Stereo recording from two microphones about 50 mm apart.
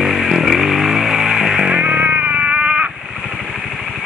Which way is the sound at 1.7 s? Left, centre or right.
Right.